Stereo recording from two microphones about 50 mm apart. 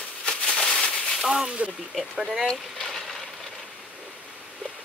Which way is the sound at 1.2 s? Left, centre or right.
Centre.